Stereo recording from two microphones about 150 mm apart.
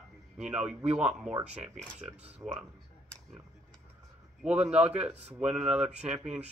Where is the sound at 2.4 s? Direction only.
20° right (ahead or behind).